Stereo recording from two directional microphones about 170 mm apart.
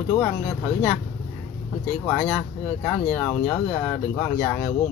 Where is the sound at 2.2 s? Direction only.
5° left (ahead or behind).